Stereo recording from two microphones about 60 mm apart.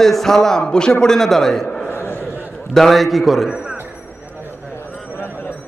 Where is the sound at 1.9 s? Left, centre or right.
Left.